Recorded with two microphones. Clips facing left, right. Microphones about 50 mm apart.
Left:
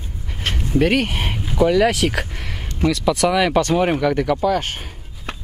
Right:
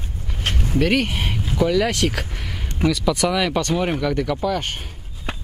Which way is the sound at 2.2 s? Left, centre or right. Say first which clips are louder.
Left 2 dB; centre.